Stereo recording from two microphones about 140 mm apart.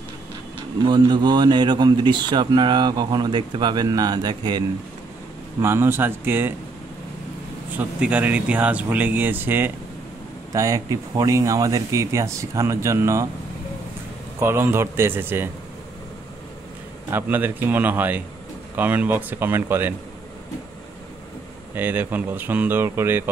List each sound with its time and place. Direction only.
0.8 s a man's voice: 30° right (ahead or behind)
5.6 s speech: 20° right (ahead or behind)
7.7 s speech: 10° right (ahead or behind)
14.4 s speech: 20° right (ahead or behind)
17.1 s speech: 15° right (ahead or behind)
21.7 s speech: 15° right (ahead or behind)